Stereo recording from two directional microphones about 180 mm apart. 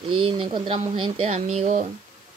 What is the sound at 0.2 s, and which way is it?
Speech, 30° right (ahead or behind).